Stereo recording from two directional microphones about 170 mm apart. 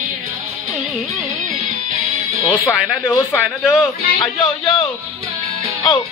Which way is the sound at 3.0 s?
15° left (ahead or behind).